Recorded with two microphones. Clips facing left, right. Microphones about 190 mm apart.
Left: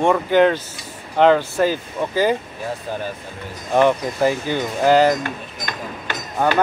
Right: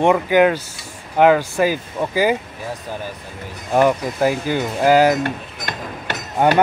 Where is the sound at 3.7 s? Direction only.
5° right (ahead or behind).